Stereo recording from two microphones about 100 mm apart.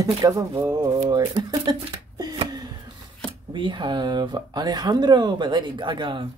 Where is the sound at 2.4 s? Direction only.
40° right (ahead or behind).